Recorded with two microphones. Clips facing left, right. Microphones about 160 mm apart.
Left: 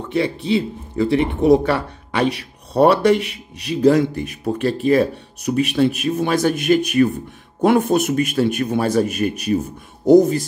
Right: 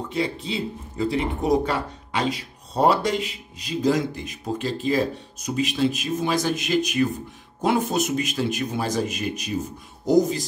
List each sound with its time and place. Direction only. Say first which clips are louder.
0.1 s speech: left 9 dB; 65° left (ahead or behind)